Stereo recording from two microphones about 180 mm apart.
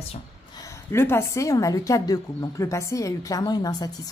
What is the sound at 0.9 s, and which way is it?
A woman's voice, 15° left (ahead or behind).